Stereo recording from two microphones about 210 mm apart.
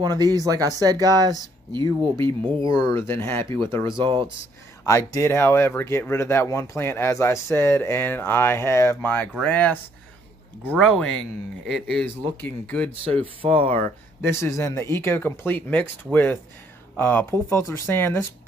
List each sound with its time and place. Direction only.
0.0 s speech: 20° right (ahead or behind)
2.9 s speech: 10° left (ahead or behind)
4.0 s speech: 25° right (ahead or behind)
4.8 s speech: 15° left (ahead or behind)
13.4 s speech: 25° right (ahead or behind)
14.2 s speech: 15° left (ahead or behind)